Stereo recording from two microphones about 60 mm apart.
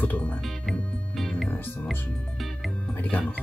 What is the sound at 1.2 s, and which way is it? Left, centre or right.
Music, centre.